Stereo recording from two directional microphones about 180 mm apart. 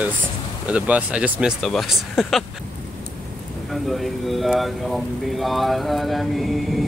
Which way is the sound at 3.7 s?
Centre (ahead or behind).